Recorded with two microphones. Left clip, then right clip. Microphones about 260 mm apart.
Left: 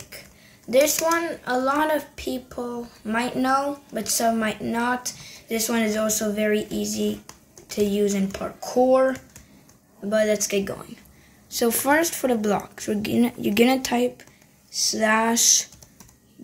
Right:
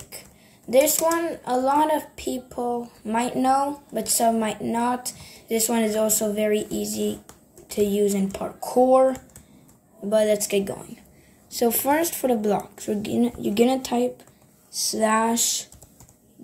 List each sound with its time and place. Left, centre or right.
0.7 s a woman's voice: centre